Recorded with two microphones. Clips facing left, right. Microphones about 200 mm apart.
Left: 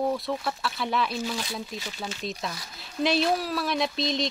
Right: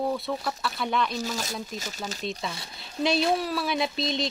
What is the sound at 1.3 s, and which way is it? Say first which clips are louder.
Speech: even; 45° right (ahead or behind).